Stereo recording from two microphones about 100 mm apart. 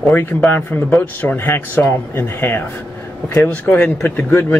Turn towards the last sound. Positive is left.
turn(degrees=15)  # may be behind; listen again after turning